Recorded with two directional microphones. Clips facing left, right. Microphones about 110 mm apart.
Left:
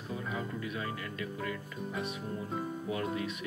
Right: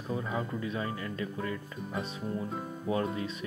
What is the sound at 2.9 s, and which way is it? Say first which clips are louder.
Speech: right 7 dB; 30° right (ahead or behind).